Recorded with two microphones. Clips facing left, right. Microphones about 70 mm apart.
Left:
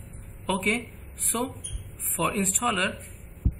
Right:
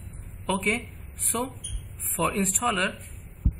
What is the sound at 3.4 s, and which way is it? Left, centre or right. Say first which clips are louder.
Heart sounds: even; centre.